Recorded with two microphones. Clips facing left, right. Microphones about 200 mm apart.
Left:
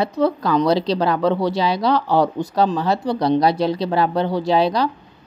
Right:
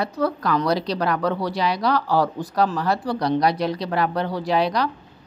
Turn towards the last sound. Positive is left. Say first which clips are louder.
# left 4 dB
turn(degrees=30)  # may be behind; listen again after turning